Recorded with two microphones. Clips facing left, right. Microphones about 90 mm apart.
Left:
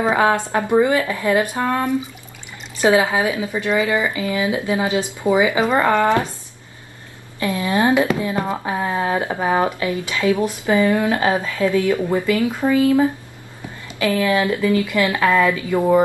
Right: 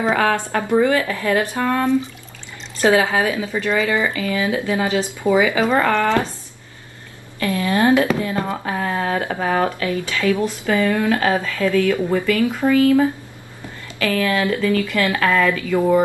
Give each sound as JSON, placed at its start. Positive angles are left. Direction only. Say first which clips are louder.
{"t": 0.0, "sound": "speech", "louder": "left 1 dB", "side_deg": 20}
{"t": 7.3, "sound": "speech", "louder": "even", "side_deg": 20}